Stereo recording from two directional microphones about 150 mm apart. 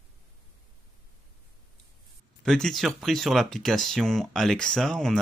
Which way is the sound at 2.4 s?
5° left (ahead or behind).